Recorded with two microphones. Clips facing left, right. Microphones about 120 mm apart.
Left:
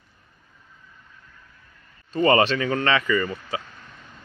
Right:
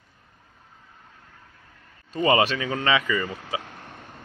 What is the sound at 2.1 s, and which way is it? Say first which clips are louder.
Speech: left 2 dB; 10° right (ahead or behind).